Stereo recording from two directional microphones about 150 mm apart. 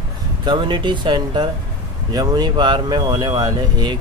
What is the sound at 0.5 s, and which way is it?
Speech, 35° right (ahead or behind).